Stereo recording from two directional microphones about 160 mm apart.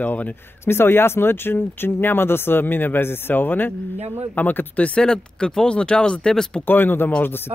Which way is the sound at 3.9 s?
40° right (ahead or behind).